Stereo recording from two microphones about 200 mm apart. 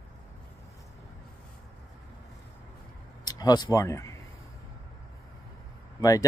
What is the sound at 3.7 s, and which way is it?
Speech, 15° left (ahead or behind).